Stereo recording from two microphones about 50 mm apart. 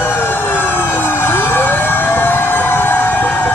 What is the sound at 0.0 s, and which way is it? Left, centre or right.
Emergency vehicle, left.